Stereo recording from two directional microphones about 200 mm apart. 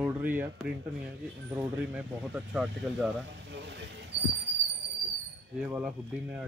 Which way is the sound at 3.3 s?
60° right (ahead or behind).